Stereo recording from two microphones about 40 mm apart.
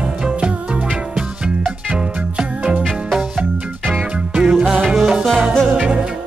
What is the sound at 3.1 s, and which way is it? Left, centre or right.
Music, centre.